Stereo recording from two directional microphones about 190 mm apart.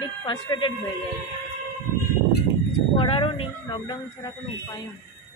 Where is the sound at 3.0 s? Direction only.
30° left (ahead or behind).